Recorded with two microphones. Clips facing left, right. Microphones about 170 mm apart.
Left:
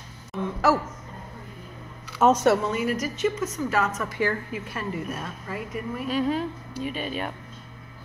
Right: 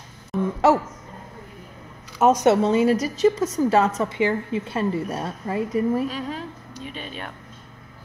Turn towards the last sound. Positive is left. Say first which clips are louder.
# left 5 dB
turn(degrees=5)  # may be behind; listen again after turning